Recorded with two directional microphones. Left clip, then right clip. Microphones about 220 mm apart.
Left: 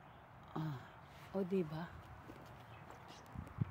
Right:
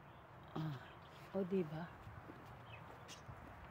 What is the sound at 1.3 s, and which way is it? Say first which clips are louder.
Speech: left 1 dB; 25° left (ahead or behind).